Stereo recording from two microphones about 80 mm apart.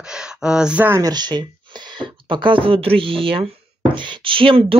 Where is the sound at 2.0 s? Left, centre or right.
Right.